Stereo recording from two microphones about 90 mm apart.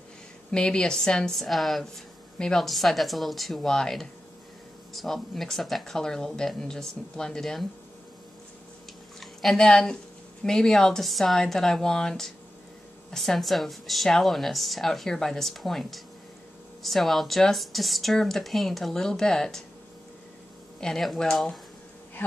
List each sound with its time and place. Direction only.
0.5 s speech: 10° left (ahead or behind)
9.2 s a woman's voice: 5° left (ahead or behind)
20.8 s speech: 5° left (ahead or behind)